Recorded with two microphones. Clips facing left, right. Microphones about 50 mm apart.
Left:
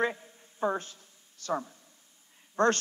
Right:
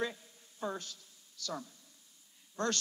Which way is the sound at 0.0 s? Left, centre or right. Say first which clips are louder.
Left 7 dB; left.